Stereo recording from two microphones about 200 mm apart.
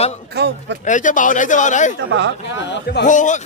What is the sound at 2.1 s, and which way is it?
Speech, 65° right (ahead or behind).